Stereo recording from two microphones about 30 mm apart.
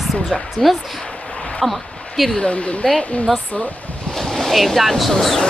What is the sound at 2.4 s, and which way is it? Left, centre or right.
Speech, left.